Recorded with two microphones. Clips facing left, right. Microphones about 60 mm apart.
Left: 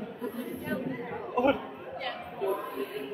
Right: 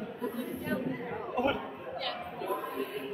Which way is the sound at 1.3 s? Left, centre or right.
Centre.